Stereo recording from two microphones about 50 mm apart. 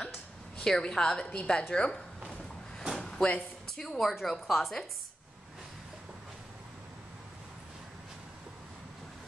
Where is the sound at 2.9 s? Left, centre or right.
Centre.